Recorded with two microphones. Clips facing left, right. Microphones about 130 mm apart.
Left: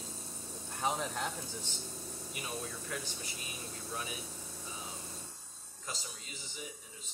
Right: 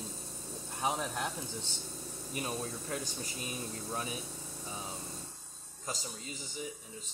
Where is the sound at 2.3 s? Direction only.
35° right (ahead or behind).